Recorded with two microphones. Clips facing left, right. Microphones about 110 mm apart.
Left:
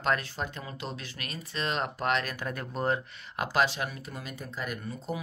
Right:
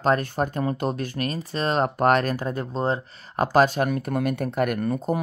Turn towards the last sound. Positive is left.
turn(degrees=-50)  # may be behind; listen again after turning